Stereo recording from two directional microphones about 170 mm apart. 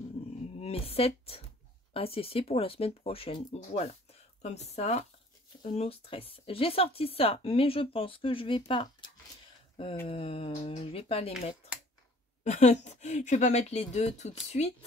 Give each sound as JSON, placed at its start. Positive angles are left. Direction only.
{"t": 0.6, "sound": "a woman's voice", "side_deg": 35}
{"t": 12.4, "sound": "speech", "side_deg": 40}